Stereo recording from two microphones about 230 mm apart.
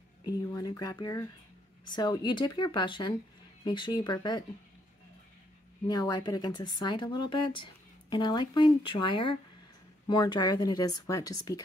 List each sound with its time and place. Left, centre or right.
0.2 s a woman's voice: centre
5.9 s a woman's voice: centre